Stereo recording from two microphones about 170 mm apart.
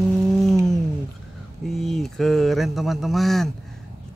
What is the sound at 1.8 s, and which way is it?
A man's voice, centre (ahead or behind).